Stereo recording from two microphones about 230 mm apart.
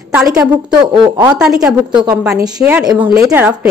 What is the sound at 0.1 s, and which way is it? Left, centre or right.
Speech, centre.